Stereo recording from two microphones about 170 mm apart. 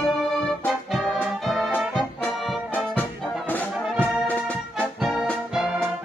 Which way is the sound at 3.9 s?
5° right (ahead or behind).